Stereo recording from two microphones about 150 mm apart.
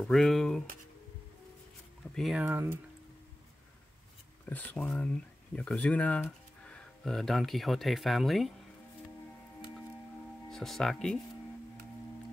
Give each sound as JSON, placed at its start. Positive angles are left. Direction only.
{"t": 0.0, "sound": "speech", "side_deg": 5}
{"t": 2.1, "sound": "speech", "side_deg": -5}
{"t": 4.5, "sound": "speech", "side_deg": 10}
{"t": 10.5, "sound": "speech", "side_deg": 0}